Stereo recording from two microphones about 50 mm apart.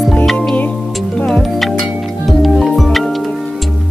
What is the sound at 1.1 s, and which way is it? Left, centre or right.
Music, centre.